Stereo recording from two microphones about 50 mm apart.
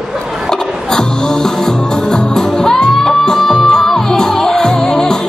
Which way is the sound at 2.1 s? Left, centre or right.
Centre.